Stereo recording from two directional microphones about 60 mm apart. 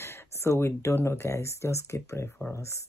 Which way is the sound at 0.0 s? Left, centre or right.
Left.